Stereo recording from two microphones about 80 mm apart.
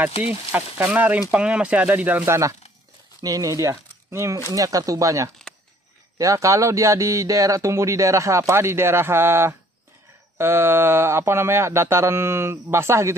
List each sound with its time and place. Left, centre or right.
0.5 s speech: right
2.2 s speech: right
3.2 s speech: right
4.5 s speech: right